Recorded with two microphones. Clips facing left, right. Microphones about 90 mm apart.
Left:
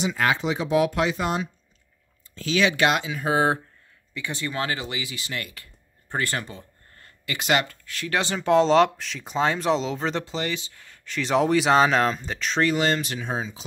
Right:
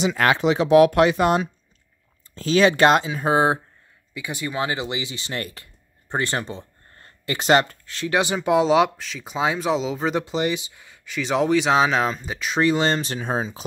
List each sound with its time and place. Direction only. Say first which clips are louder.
0.0 s speech: right 4 dB; 70° right (ahead or behind)
2.3 s speech: right 5 dB; 40° right (ahead or behind)
4.1 s speech: right 2 dB; 10° right (ahead or behind)
10.2 s speech: right 5 dB; 20° right (ahead or behind)
12.6 s speech: right 3 dB; 25° right (ahead or behind); by 13.7 s 45° right (ahead or behind)